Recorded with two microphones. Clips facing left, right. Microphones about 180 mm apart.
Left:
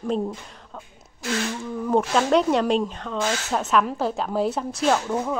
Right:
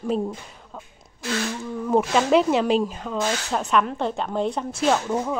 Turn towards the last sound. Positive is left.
turn(degrees=0)  # may be behind; listen again after turning